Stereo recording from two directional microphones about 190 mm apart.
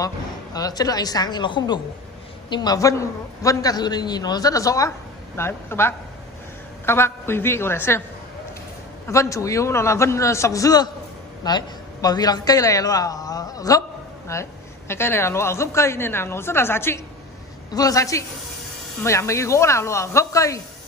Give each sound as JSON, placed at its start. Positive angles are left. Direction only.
{"t": 0.0, "sound": "a woman's voice", "side_deg": 20}
{"t": 9.0, "sound": "a man's voice", "side_deg": 15}